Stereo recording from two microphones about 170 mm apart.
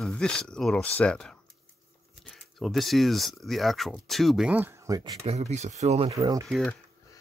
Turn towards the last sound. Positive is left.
turn(degrees=5)  # may be behind; listen again after turning